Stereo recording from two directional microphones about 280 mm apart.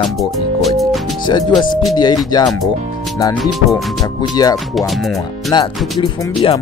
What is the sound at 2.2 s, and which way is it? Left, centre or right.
Speech, centre.